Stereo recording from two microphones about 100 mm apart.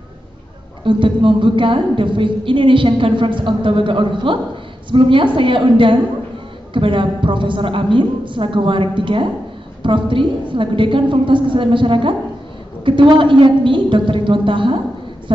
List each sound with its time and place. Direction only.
0.8 s a woman's voice: 55° right (ahead or behind)